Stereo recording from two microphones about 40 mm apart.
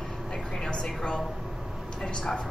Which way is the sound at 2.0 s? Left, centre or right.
Centre.